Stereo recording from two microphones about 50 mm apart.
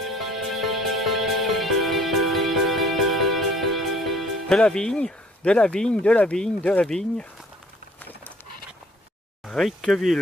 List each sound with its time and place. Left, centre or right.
0.0 s music: centre
4.5 s speech: centre
9.4 s a sound: centre
9.7 s speech: centre